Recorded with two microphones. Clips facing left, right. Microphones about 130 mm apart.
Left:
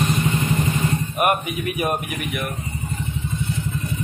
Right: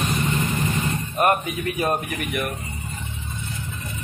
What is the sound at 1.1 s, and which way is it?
Speech, 15° left (ahead or behind).